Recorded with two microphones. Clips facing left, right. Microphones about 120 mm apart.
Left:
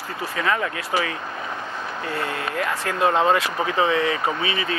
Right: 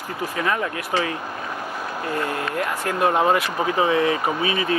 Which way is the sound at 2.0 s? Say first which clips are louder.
Right 2 dB; 15° right (ahead or behind).